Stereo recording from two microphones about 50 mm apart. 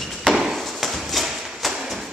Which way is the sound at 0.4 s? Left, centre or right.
Centre.